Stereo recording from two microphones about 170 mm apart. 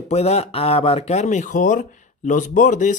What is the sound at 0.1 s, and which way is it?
Speech, 40° left (ahead or behind).